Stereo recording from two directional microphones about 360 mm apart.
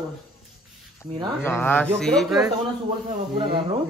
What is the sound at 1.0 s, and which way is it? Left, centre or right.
Speech, centre.